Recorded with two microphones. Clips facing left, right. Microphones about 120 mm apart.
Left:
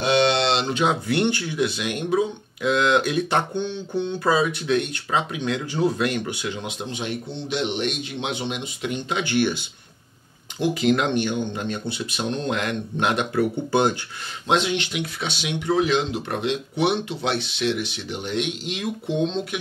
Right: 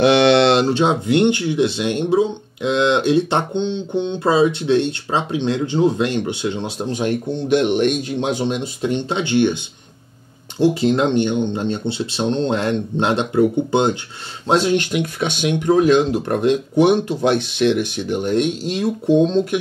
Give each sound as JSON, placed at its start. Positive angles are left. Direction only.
{"t": 0.0, "sound": "a sound", "side_deg": -70}
{"t": 0.7, "sound": "speech", "side_deg": -30}
{"t": 10.6, "sound": "speech", "side_deg": -30}
{"t": 14.5, "sound": "speech", "side_deg": -40}